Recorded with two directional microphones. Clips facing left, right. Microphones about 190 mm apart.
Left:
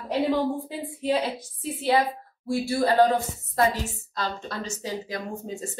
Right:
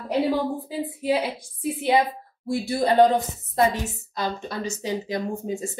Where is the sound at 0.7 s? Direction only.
5° right (ahead or behind).